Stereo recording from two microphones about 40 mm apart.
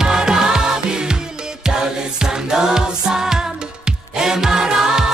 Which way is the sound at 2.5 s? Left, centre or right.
Centre.